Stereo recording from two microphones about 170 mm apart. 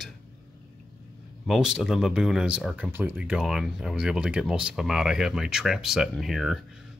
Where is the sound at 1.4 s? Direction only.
5° right (ahead or behind).